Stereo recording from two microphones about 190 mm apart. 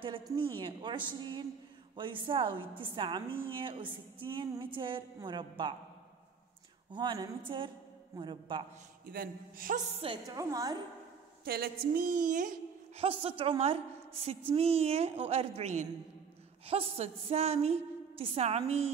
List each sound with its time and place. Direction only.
0.4 s speech: 25° right (ahead or behind)
6.9 s speech: 25° right (ahead or behind)
9.0 s a man's voice: 50° right (ahead or behind)
10.2 s speech: 15° right (ahead or behind)
11.4 s a man's voice: 55° right (ahead or behind)
13.0 s a woman's voice: 30° right (ahead or behind)